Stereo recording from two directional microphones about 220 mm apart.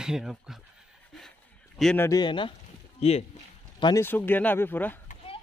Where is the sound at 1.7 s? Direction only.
Centre (ahead or behind).